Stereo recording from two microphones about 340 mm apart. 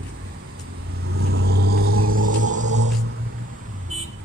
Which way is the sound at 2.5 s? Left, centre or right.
Right.